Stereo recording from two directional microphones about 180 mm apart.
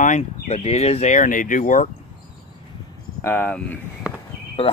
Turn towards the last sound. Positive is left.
turn(degrees=35)  # may be behind; listen again after turning